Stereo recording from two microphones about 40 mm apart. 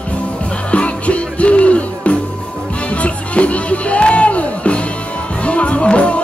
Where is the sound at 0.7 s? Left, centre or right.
Left.